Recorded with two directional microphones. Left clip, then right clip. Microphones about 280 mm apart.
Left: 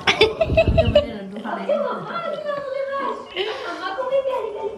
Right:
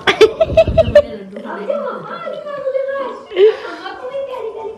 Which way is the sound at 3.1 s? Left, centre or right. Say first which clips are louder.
Right 13 dB; centre.